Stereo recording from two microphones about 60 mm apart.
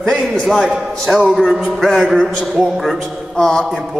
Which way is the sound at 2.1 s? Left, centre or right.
Centre.